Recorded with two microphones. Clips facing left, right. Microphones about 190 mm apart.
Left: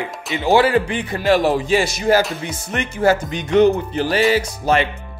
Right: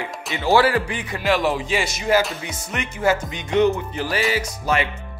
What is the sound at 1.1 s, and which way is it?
Speech, 40° left (ahead or behind).